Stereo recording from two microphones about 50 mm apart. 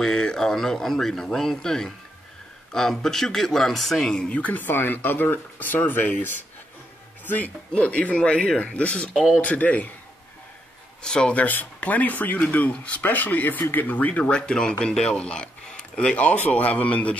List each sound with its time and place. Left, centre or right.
0.0 s speech: centre
4.3 s speech: left
7.2 s speech: left
11.0 s speech: centre
11.3 s speech: left